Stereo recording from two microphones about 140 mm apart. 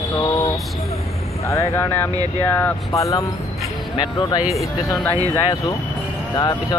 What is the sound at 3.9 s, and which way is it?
Speech, 35° left (ahead or behind).